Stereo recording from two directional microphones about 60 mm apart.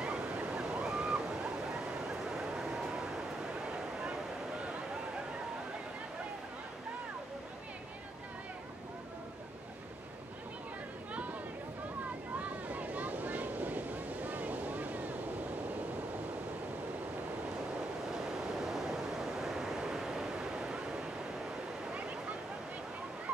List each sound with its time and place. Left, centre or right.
0.0 s waves: centre
3.6 s a sound: centre
12.4 s waves: right
18.6 s waves: centre